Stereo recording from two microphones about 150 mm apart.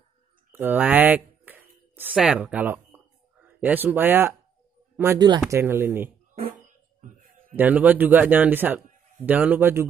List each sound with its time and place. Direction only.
0.5 s a sound: 15° right (ahead or behind)
2.2 s a man's voice: 5° right (ahead or behind)
5.2 s speech: 30° right (ahead or behind)
5.6 s a man's voice: 15° right (ahead or behind)
7.0 s a sound: 60° right (ahead or behind)
7.5 s a man's voice: 10° right (ahead or behind)